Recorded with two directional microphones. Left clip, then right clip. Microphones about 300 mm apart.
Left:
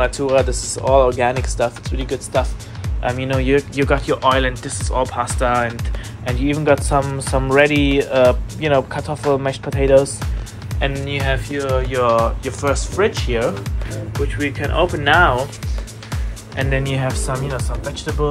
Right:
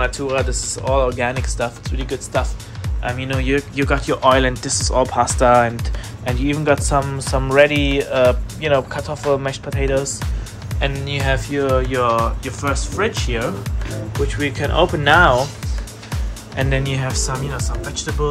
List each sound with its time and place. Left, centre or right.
0.0 s speech: centre
4.0 s speech: centre
6.5 s speech: centre
11.1 s speech: centre
14.2 s speech: centre
16.5 s speech: centre